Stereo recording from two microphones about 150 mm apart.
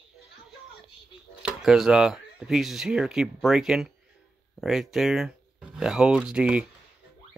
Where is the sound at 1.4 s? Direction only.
5° right (ahead or behind).